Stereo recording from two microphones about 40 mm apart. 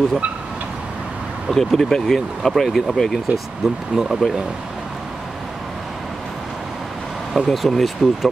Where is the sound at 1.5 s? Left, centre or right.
Centre.